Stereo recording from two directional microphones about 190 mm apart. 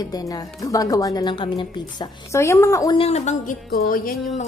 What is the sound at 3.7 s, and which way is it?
Music, 50° left (ahead or behind).